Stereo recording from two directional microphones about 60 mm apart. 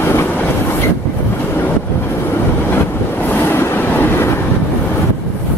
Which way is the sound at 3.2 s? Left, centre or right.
Left.